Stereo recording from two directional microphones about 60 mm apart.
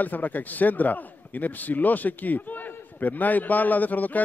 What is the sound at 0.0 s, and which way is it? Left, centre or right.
A man's voice, left.